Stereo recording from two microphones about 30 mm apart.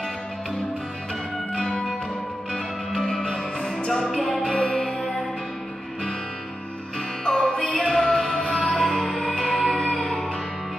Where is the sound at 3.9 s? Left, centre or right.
Centre.